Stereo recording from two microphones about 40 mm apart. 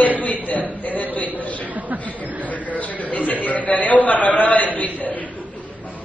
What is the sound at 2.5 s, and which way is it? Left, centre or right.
A man's voice, left.